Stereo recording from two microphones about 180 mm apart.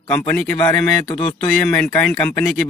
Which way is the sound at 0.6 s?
25° left (ahead or behind).